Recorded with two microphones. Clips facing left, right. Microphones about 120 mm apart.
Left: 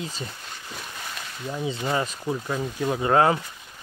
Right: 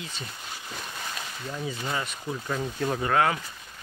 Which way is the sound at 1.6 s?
25° left (ahead or behind).